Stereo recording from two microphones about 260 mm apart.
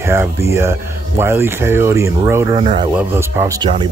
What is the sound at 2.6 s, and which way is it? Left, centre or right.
Speech, right.